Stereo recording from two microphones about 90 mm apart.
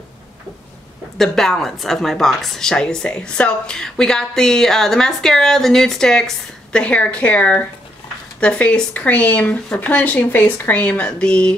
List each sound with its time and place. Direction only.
1.1 s a woman's voice: 5° left (ahead or behind)